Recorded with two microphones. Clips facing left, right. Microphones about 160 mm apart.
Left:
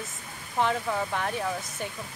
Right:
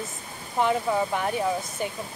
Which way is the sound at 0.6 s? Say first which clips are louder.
Right 3 dB; 10° right (ahead or behind).